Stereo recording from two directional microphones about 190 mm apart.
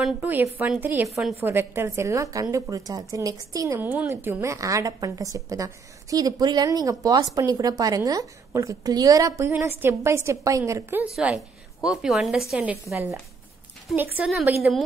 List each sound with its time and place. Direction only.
0.0 s a woman's voice: 10° right (ahead or behind)
1.4 s a woman's voice: 10° right (ahead or behind)
14.1 s a woman's voice: 5° right (ahead or behind)